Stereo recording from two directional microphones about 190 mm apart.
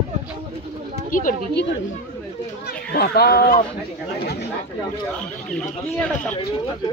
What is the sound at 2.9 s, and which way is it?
Speech, 55° left (ahead or behind).